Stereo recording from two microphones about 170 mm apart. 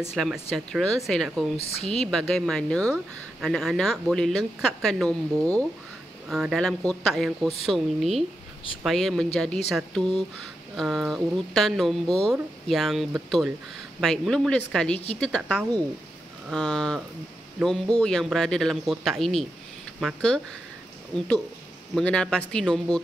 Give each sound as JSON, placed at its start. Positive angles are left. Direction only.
{"t": 0.1, "sound": "speech", "side_deg": 0}
{"t": 1.6, "sound": "speech", "side_deg": 35}
{"t": 1.9, "sound": "speech", "side_deg": 5}
{"t": 16.4, "sound": "speech", "side_deg": 5}
{"t": 21.9, "sound": "speech", "side_deg": 5}